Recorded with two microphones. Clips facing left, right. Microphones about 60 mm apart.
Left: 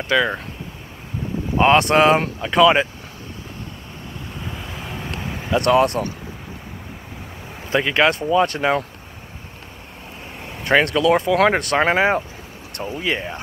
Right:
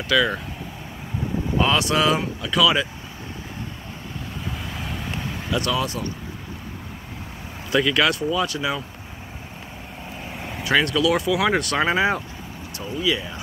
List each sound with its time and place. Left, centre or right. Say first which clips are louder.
0.0 s speech: left 1 dB; left
1.6 s speech: left 7 dB; left
4.5 s vehicle: right 1 dB; centre
5.6 s speech: left 10 dB; left
7.7 s speech: left 2 dB; left
8.5 s speech: left 6 dB; left
10.3 s vehicle: right 2 dB; centre
10.6 s speech: left 3 dB; left
12.7 s speech: left 1 dB; left